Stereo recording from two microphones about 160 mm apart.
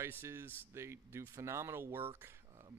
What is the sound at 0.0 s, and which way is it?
Speech, 15° right (ahead or behind).